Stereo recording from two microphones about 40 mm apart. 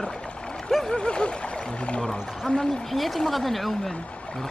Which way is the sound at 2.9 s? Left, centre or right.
Centre.